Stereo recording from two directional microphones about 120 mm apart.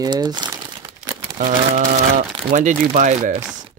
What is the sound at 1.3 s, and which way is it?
Speech, 90° right.